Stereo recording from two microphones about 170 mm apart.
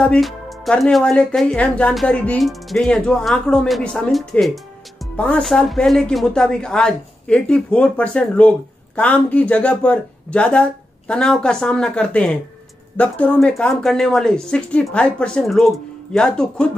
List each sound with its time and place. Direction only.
0.0 s speech: 5° left (ahead or behind)